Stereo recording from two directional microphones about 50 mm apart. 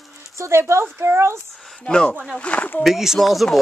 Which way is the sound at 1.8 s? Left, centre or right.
Centre.